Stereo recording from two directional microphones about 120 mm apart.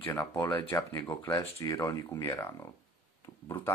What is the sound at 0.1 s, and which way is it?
Speech, 15° left (ahead or behind).